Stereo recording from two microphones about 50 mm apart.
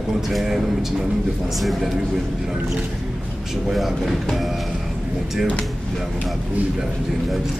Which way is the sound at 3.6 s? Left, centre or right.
Centre.